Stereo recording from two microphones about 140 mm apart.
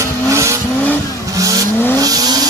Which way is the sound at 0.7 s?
10° left (ahead or behind).